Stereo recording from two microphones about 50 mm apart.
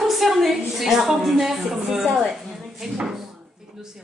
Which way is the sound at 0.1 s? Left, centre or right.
Centre.